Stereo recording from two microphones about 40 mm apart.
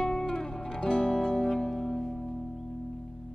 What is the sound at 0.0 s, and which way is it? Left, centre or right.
Music, centre.